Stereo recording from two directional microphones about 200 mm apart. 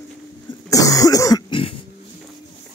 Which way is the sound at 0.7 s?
15° left (ahead or behind).